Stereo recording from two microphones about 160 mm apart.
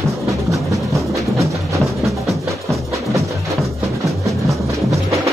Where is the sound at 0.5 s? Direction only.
20° right (ahead or behind).